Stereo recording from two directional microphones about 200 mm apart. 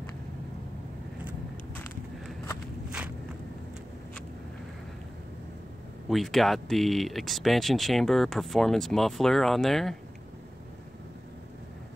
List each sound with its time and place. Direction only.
6.0 s speech: centre (ahead or behind)